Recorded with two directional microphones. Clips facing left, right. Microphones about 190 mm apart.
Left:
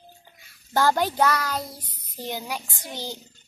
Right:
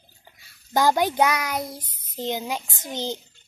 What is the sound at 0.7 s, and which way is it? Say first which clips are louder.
A child's voice: right 2 dB; 15° right (ahead or behind).